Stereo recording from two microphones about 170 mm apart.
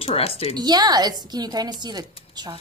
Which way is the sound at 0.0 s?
35° left (ahead or behind).